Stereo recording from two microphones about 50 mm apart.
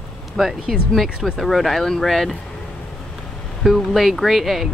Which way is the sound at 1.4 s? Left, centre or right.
Centre.